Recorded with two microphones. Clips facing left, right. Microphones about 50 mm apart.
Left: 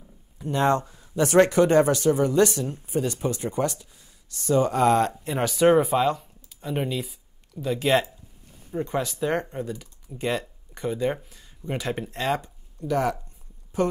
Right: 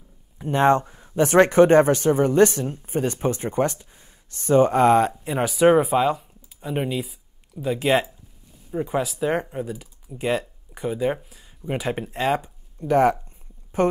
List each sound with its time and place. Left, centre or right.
0.4 s speech: right
4.9 s speech: centre
12.8 s speech: right